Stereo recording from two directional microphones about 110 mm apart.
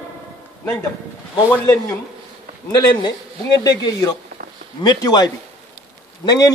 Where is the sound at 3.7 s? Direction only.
35° left (ahead or behind).